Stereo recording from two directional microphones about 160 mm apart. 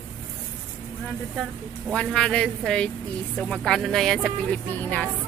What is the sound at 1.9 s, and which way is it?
A woman's voice, 5° left (ahead or behind).